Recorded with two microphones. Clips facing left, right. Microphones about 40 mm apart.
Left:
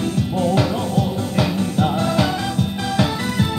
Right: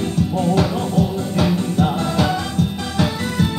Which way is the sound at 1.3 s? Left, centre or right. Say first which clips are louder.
Right 2 dB; centre.